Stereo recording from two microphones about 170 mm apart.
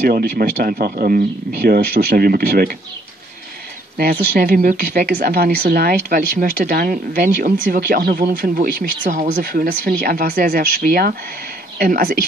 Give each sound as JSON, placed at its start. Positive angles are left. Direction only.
{"t": 0.0, "sound": "speech", "side_deg": -65}
{"t": 4.0, "sound": "speech", "side_deg": -65}